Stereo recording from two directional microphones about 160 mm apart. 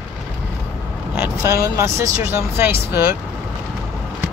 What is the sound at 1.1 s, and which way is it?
Speech, 15° right (ahead or behind).